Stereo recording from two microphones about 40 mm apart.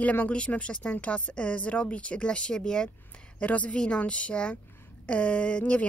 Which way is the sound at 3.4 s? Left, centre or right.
Left.